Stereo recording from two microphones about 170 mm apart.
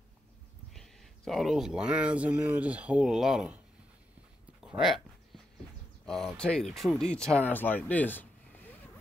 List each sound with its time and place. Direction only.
0.7 s speech: centre (ahead or behind)
4.6 s speech: centre (ahead or behind)
6.0 s speech: 5° left (ahead or behind)